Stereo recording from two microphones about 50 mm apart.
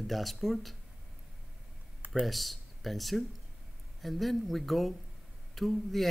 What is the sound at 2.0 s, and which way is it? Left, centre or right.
Computer keyboard, right.